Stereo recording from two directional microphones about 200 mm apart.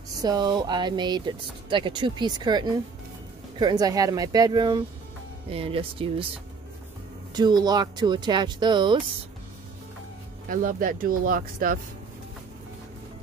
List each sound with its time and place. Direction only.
0.2 s speech: 20° right (ahead or behind)
7.3 s speech: 20° right (ahead or behind)
10.5 s speech: 40° right (ahead or behind)